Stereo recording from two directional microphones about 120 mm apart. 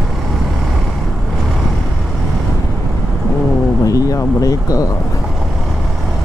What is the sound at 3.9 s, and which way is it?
Speech, 30° left (ahead or behind).